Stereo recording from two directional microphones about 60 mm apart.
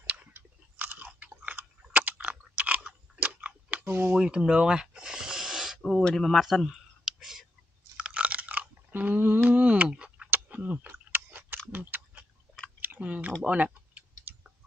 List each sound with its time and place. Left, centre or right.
0.0 s chewing: right
3.8 s speech: right
4.1 s a sound: centre
5.8 s speech: centre
7.1 s whispering: centre
8.0 s chewing: right
9.8 s a sound: centre
10.3 s a sound: right
11.7 s chewing: right
12.8 s clicking: right
13.4 s speech: right
13.7 s a sound: right